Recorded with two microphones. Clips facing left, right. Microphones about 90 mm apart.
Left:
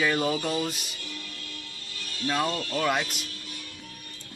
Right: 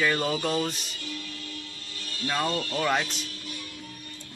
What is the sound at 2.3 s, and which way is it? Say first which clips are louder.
Speech: even; 5° left (ahead or behind).